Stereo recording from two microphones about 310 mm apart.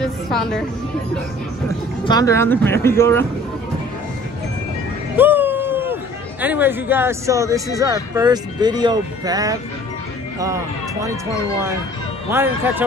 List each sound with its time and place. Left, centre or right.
0.0 s a woman's voice: centre
2.0 s speech: centre
5.1 s a sound: centre
6.4 s speech: centre
12.3 s speech: centre